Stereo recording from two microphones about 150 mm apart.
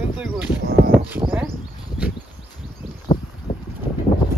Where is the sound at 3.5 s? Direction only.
40° left (ahead or behind).